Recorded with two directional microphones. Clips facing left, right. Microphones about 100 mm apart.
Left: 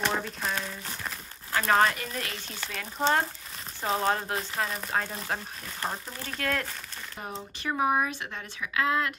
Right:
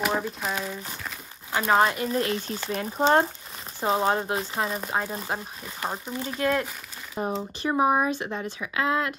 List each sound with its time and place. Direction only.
0.0 s speech: 5° right (ahead or behind)
1.5 s speech: 20° right (ahead or behind)
2.0 s speech: 30° right (ahead or behind)
5.0 s speech: 5° right (ahead or behind)
7.2 s speech: 30° right (ahead or behind)